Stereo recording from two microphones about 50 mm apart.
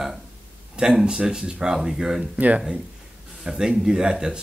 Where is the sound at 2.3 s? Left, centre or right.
Right.